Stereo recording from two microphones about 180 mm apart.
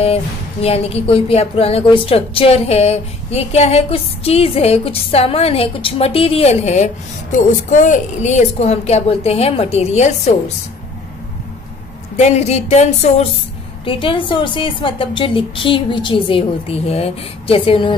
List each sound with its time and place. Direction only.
0.0 s speech: 35° left (ahead or behind)
12.2 s a woman's voice: 40° left (ahead or behind)